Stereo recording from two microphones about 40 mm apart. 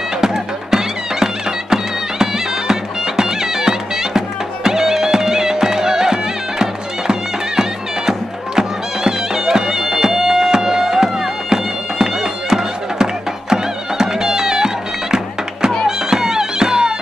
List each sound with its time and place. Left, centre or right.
0.2 s music: centre
8.1 s bagpipes: centre
16.1 s music: centre